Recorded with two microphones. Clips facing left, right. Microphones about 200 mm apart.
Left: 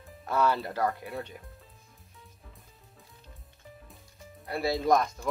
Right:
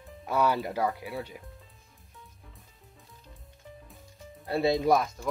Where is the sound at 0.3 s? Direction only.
10° right (ahead or behind).